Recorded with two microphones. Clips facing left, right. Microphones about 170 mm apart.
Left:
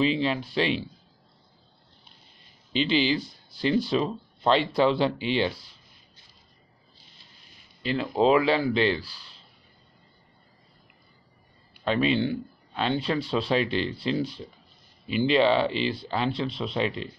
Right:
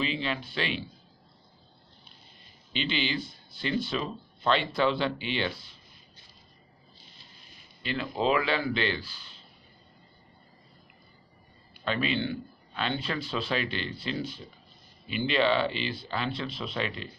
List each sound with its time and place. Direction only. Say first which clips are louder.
0.0 s speech: left 7 dB; 30° left (ahead or behind)
2.7 s speech: left 7 dB; 35° left (ahead or behind)
7.8 s speech: left 6 dB; 30° left (ahead or behind)
11.8 s speech: left 5 dB; 30° left (ahead or behind)